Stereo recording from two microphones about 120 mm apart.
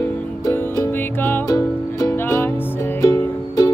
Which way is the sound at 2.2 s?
15° left (ahead or behind).